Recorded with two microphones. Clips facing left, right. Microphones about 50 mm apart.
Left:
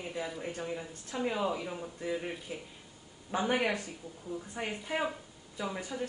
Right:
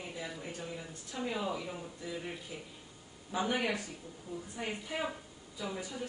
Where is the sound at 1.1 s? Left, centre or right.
Left.